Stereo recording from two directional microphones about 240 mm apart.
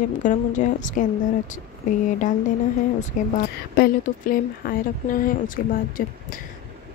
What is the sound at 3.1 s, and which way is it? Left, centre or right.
Speech, left.